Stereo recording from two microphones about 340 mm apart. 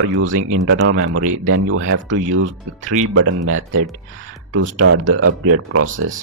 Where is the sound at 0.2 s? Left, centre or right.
Right.